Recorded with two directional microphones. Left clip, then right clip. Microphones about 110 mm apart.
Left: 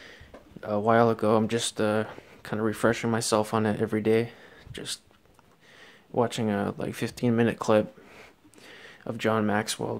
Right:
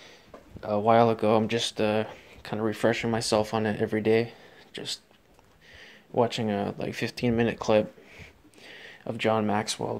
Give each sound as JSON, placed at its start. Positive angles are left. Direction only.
{"t": 0.6, "sound": "speech", "side_deg": 35}
{"t": 8.6, "sound": "speech", "side_deg": 30}